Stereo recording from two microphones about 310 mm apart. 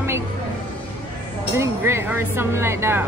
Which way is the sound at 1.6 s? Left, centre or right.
Centre.